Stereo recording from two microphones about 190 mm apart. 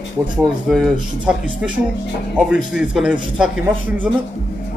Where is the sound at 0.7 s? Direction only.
5° right (ahead or behind).